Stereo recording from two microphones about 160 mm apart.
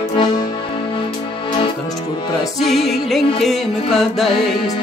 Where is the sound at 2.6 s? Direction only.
Centre (ahead or behind).